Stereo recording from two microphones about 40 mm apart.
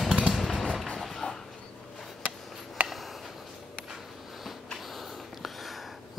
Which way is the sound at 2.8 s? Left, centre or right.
Right.